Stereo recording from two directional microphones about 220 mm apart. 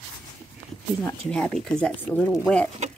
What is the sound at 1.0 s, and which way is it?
Speech, 5° left (ahead or behind).